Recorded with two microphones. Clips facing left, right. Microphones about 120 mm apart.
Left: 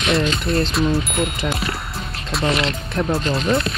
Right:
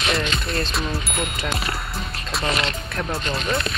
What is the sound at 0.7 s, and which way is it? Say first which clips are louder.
Speech: left 7 dB; centre (ahead or behind).